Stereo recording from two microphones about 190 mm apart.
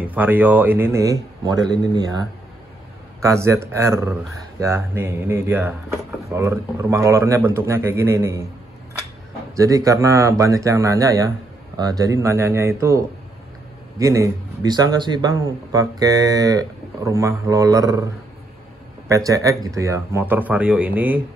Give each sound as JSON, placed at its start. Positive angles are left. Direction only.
{"t": 0.0, "sound": "a man's voice", "side_deg": -10}
{"t": 3.2, "sound": "a man's voice", "side_deg": -15}
{"t": 9.6, "sound": "a man's voice", "side_deg": -15}